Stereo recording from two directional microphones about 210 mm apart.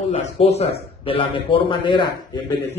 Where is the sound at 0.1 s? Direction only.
30° left (ahead or behind).